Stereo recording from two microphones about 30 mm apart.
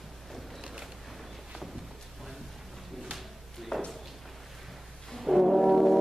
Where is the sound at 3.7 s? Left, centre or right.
Centre.